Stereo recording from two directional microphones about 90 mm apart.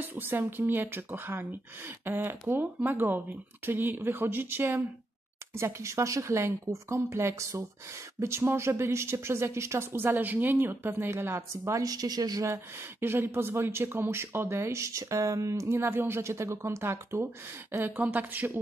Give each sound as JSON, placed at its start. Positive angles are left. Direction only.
{"t": 0.0, "sound": "speech", "side_deg": -25}
{"t": 13.0, "sound": "speech", "side_deg": -25}